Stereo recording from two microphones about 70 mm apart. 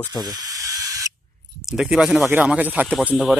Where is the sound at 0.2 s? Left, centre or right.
Right.